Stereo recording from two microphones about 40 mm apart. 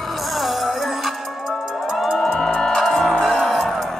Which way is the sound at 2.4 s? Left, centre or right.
Centre.